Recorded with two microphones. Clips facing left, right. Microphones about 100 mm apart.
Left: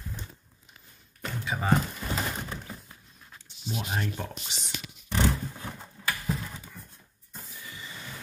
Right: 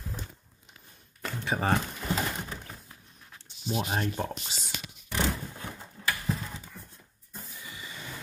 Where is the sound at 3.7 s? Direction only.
35° right (ahead or behind).